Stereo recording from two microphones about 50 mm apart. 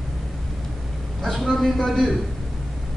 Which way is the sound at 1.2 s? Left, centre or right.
Centre.